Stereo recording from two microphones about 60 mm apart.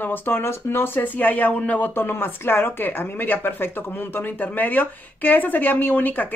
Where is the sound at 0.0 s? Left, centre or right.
Left.